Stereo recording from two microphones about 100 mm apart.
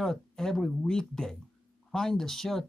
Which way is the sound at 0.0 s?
5° left (ahead or behind).